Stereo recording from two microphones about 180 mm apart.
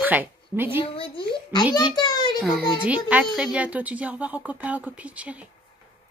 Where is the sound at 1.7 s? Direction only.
20° left (ahead or behind).